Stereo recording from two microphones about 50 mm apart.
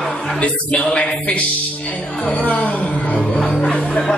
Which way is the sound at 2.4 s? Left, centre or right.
Left.